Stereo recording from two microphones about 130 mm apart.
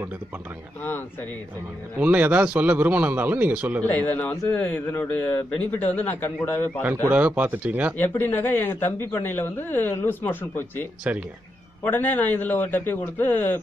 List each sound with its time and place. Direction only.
2.0 s a man's voice: 10° right (ahead or behind)
3.8 s speech: 15° left (ahead or behind)
7.1 s a man's voice: 10° right (ahead or behind)
8.0 s speech: 15° left (ahead or behind)